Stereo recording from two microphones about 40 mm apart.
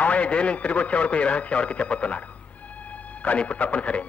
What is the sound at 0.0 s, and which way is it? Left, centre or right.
A man's voice, left.